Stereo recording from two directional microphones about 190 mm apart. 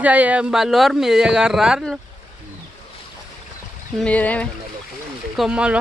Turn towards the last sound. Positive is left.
turn(degrees=-5)  # may be behind; listen again after turning